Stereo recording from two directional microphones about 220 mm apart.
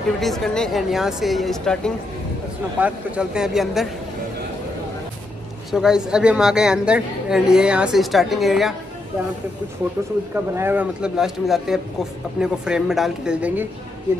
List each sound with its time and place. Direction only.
0.2 s a woman's voice: centre (ahead or behind)
5.7 s a woman's voice: centre (ahead or behind)
10.3 s a woman's voice: 10° right (ahead or behind)